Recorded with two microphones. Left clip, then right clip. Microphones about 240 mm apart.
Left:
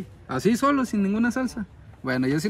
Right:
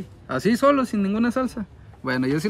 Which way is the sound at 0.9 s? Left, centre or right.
Centre.